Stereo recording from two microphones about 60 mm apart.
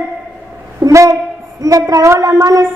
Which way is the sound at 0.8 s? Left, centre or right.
Right.